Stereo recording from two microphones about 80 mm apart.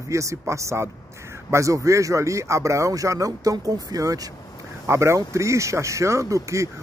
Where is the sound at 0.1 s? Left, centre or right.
Right.